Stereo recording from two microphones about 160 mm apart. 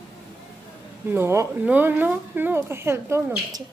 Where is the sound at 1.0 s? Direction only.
15° right (ahead or behind).